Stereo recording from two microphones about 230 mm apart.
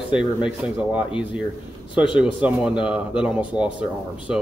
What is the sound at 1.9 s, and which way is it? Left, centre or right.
Speech, centre.